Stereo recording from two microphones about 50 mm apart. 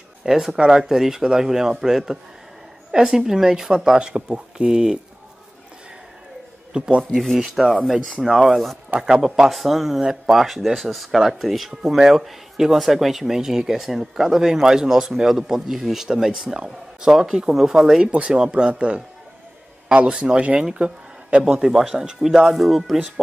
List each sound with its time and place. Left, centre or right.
0.2 s speech: centre
6.7 s speech: centre
7.2 s speech: centre
8.9 s speech: centre
21.5 s speech: centre